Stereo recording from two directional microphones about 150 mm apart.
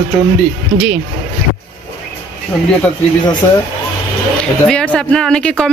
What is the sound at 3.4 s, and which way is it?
Speech, 15° left (ahead or behind).